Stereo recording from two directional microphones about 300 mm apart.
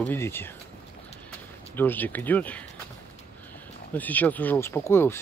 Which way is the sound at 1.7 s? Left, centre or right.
Centre.